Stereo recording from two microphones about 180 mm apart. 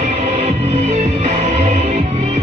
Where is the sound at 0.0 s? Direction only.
35° right (ahead or behind).